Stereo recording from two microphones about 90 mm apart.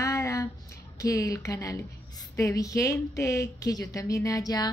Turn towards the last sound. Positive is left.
turn(degrees=40)  # may be behind; listen again after turning